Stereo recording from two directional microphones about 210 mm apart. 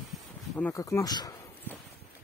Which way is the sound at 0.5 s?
10° left (ahead or behind).